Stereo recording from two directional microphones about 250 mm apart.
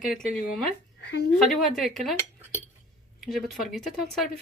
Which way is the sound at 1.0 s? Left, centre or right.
Left.